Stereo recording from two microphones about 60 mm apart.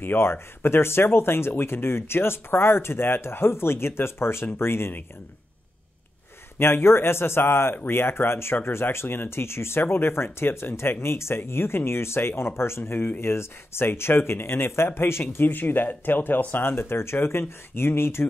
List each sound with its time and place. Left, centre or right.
0.0 s speech: left
6.6 s speech: left